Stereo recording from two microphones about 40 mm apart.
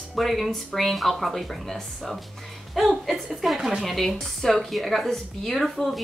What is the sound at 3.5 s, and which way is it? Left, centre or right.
Speech, centre.